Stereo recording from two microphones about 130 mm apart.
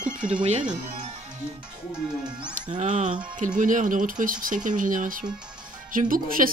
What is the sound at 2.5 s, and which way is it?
Speech, 70° right (ahead or behind).